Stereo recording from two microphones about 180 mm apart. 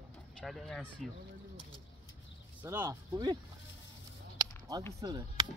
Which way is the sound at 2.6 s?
10° right (ahead or behind).